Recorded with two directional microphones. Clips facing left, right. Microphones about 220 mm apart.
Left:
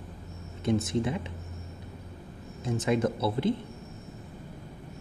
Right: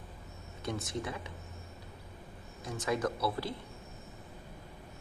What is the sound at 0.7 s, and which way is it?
Speech, 25° left (ahead or behind).